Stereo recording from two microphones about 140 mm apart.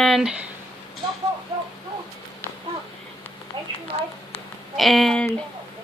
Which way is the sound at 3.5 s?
30° right (ahead or behind).